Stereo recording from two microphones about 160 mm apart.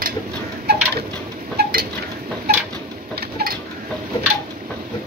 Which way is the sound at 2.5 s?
80° right.